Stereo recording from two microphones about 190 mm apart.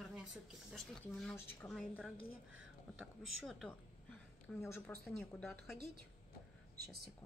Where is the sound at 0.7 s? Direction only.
Centre (ahead or behind).